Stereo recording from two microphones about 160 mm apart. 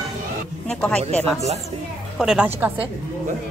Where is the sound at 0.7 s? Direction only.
5° left (ahead or behind).